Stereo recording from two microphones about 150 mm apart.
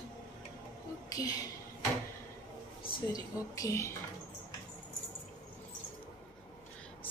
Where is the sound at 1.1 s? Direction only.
25° left (ahead or behind).